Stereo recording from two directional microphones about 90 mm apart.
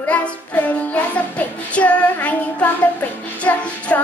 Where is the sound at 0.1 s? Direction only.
15° left (ahead or behind).